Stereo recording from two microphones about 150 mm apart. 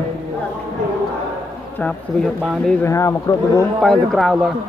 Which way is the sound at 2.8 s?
20° left (ahead or behind).